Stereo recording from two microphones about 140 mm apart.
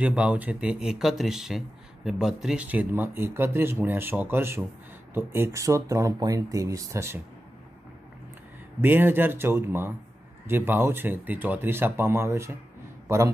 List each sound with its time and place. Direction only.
0.0 s speech: 10° right (ahead or behind)
8.8 s speech: 15° right (ahead or behind)